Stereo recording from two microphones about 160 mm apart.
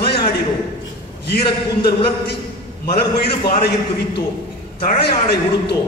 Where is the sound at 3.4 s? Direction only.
80° left.